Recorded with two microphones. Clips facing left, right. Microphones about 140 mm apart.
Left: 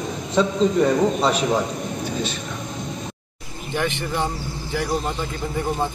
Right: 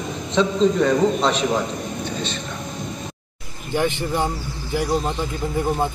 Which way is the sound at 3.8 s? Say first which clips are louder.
Right 3 dB; 15° right (ahead or behind).